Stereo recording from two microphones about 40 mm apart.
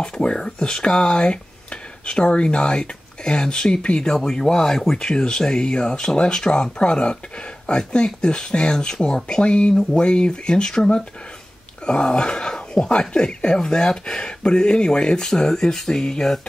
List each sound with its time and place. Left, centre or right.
0.0 s speech: centre
4.9 s speech: left